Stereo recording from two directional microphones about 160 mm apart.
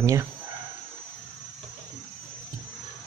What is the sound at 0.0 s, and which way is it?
Speech, 20° right (ahead or behind).